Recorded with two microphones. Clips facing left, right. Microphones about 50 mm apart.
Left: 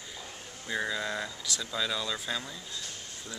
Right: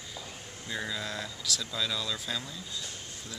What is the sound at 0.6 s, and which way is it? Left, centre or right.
Speech, centre.